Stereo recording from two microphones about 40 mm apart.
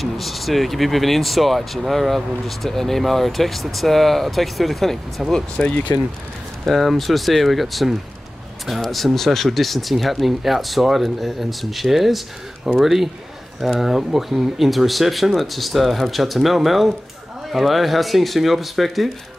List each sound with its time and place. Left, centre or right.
0.0 s speech: centre
5.6 s speech: left
6.6 s speech: centre